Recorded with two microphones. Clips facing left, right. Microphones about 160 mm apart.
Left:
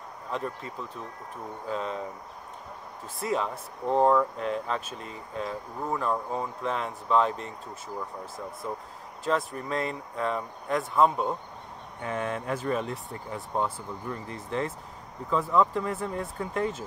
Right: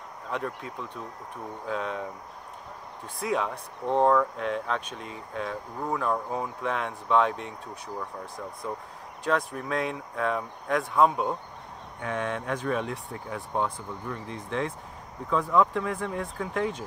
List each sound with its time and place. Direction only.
1.7 s speech: centre (ahead or behind)
3.2 s speech: centre (ahead or behind)
9.2 s speech: centre (ahead or behind)